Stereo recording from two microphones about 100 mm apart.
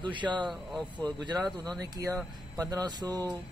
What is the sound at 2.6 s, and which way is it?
Speech, 40° right (ahead or behind).